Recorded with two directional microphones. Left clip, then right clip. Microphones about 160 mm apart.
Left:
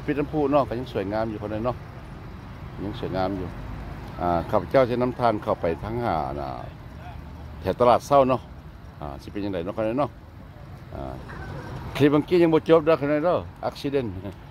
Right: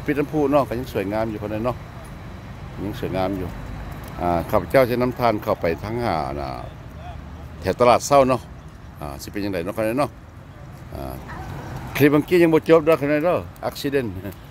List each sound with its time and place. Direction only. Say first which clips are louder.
0.0 s speech: right 3 dB; centre (ahead or behind)
2.9 s speech: right 3 dB; 5° right (ahead or behind)
7.6 s speech: right 3 dB; 5° right (ahead or behind)
11.9 s speech: right 3 dB; centre (ahead or behind)